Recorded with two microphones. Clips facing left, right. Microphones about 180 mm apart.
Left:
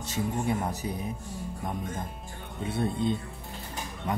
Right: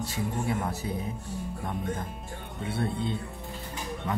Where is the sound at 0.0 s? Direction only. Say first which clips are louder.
Left 1 dB; 20° left (ahead or behind).